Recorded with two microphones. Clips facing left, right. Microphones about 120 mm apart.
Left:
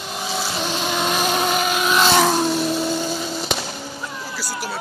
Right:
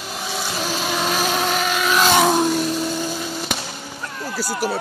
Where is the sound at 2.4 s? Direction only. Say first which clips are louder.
Even; centre (ahead or behind).